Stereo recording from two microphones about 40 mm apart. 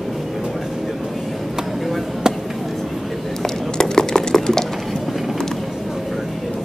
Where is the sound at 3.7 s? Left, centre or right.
Centre.